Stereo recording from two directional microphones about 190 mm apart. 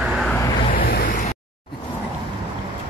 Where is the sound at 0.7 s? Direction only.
50° left (ahead or behind).